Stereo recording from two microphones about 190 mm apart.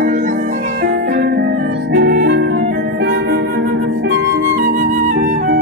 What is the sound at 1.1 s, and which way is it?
Music, 60° right (ahead or behind).